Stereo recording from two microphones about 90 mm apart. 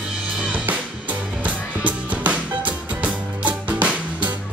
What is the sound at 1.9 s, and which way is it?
Music, 15° right (ahead or behind).